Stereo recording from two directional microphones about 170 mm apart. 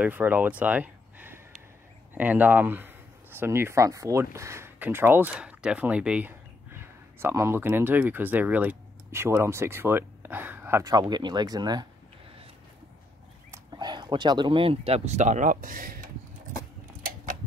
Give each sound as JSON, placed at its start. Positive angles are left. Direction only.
{"t": 0.0, "sound": "speech", "side_deg": -10}
{"t": 13.5, "sound": "speech", "side_deg": -25}